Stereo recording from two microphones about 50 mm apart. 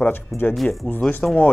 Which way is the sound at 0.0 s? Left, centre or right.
Left.